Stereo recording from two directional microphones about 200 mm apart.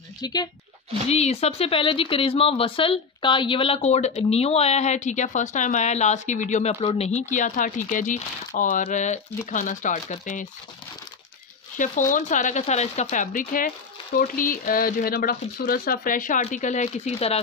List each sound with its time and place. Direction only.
0.2 s speech: 20° left (ahead or behind)
1.0 s speech: 30° left (ahead or behind)
11.7 s speech: 40° left (ahead or behind)